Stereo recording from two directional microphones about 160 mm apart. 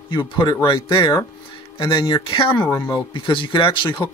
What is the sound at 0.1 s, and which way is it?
Speech, 30° left (ahead or behind).